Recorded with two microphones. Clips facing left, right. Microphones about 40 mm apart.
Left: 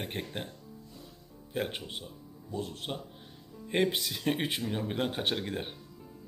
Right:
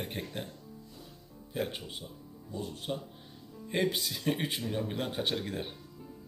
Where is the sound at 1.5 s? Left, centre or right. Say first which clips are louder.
Left 1 dB; left.